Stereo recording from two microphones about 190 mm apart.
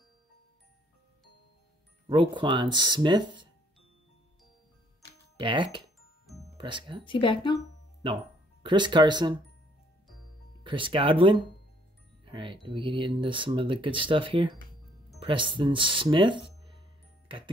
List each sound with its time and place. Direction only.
2.0 s speech: 25° right (ahead or behind)
5.4 s speech: 25° right (ahead or behind)
7.1 s speech: 25° left (ahead or behind)
8.6 s speech: 25° right (ahead or behind)
10.6 s speech: 25° right (ahead or behind)